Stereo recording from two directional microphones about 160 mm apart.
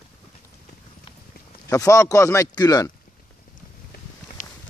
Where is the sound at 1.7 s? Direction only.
20° left (ahead or behind).